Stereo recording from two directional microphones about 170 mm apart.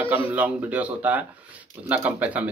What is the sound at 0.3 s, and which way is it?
Speech, 10° right (ahead or behind).